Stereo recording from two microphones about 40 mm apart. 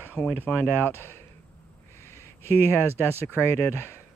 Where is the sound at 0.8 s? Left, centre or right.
Left.